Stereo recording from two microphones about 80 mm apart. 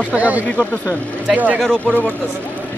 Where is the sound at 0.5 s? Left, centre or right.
Centre.